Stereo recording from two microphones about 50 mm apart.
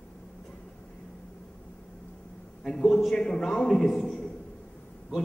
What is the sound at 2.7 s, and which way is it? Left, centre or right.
A man's voice, centre.